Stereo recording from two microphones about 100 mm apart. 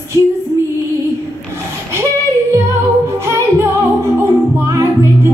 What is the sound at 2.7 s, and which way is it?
Music, 25° right (ahead or behind).